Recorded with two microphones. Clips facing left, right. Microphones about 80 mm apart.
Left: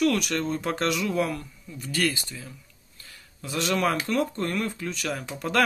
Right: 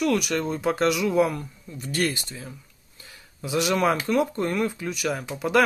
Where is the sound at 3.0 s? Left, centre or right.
Centre.